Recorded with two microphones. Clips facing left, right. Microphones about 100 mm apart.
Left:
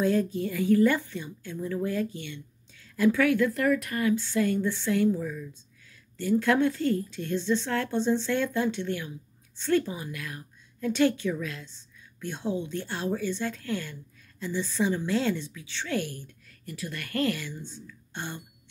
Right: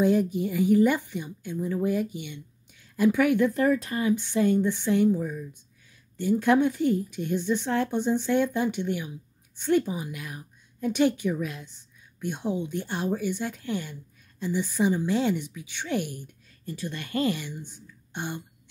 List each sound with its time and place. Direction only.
0.0 s a woman's voice: 15° right (ahead or behind)